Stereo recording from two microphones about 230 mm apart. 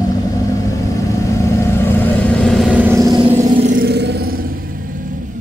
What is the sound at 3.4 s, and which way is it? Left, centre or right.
Vehicle, right.